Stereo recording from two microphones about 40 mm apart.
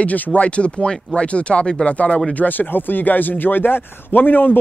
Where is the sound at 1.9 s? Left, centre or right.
Left.